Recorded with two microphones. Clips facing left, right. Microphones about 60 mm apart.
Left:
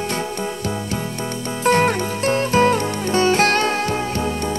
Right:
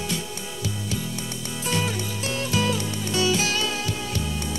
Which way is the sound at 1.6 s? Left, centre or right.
Left.